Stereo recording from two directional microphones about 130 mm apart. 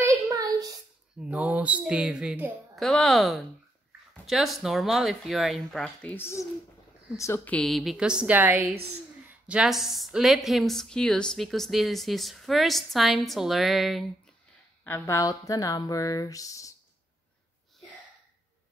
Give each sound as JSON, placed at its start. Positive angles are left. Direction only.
{"t": 0.3, "sound": "a sound", "side_deg": -30}
{"t": 1.2, "sound": "music", "side_deg": -10}
{"t": 2.7, "sound": "a woman's voice", "side_deg": 5}
{"t": 6.1, "sound": "speech", "side_deg": 20}
{"t": 7.5, "sound": "music", "side_deg": 0}
{"t": 9.3, "sound": "a woman's voice", "side_deg": -5}
{"t": 14.9, "sound": "speech", "side_deg": 25}